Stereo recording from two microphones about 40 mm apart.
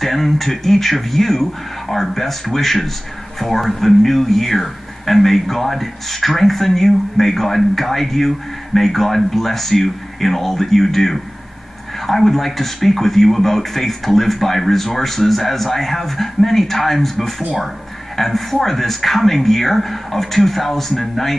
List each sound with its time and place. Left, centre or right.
0.0 s speech: centre